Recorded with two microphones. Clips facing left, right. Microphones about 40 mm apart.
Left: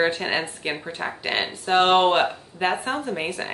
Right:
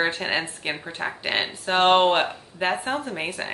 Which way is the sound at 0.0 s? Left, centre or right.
Centre.